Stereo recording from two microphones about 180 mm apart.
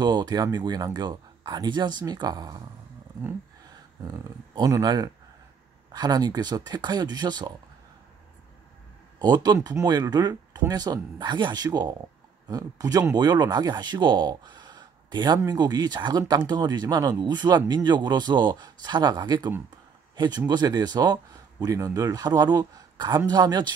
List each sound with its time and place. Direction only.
0.0 s speech: 25° right (ahead or behind)
4.6 s speech: 20° right (ahead or behind)
9.2 s speech: 20° right (ahead or behind)